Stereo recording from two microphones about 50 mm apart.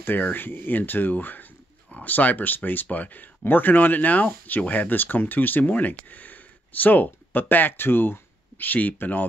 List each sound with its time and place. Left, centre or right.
0.0 s speech: left